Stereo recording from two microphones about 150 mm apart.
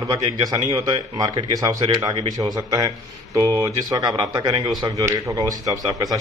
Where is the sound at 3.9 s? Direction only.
25° right (ahead or behind).